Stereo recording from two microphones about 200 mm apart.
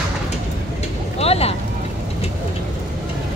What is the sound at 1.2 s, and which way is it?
Speech, 30° left (ahead or behind).